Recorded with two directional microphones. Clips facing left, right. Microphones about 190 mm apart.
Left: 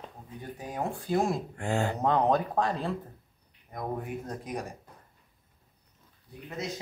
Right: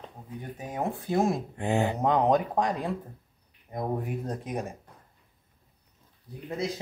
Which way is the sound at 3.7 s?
25° right (ahead or behind).